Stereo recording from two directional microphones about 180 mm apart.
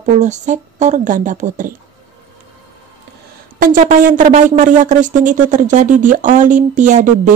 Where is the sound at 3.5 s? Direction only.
50° right (ahead or behind).